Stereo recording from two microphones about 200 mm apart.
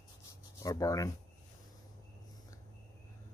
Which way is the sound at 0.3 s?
15° left (ahead or behind).